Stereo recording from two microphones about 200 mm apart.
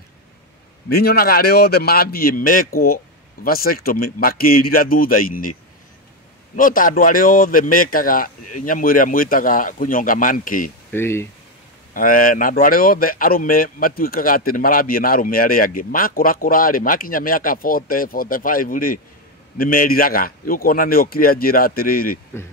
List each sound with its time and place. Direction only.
0.8 s speech: 50° left (ahead or behind)
6.5 s speech: 45° left (ahead or behind)
10.9 s speech: 10° left (ahead or behind)
11.9 s speech: 45° left (ahead or behind)